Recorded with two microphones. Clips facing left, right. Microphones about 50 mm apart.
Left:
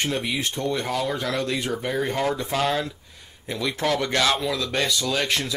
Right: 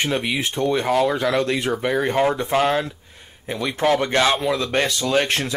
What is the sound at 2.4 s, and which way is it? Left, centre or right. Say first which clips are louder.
Speech: right 5 dB; right.